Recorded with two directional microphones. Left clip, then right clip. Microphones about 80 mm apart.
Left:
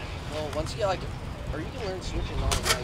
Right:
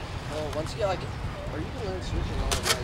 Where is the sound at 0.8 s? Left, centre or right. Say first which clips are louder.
Left 1 dB; centre.